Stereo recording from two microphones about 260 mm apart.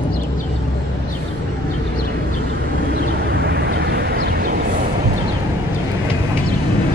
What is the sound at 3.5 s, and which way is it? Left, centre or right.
Vehicle, right.